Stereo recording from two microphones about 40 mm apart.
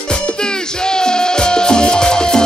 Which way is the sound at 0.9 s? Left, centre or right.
Centre.